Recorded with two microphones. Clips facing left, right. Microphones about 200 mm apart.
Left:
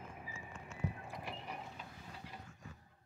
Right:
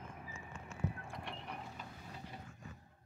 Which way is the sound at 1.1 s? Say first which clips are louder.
Left 1 dB; 5° left (ahead or behind).